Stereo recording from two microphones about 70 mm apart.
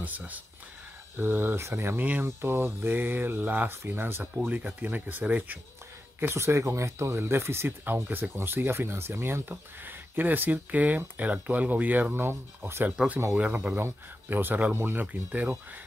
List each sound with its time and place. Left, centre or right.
0.0 s speech: right
6.1 s speech: right
12.9 s speech: centre
13.7 s speech: right